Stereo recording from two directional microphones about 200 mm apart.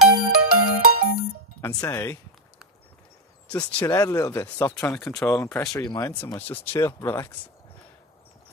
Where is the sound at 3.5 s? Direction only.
5° left (ahead or behind).